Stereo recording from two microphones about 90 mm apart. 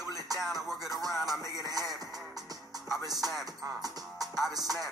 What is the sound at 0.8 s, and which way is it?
Music, 45° right (ahead or behind).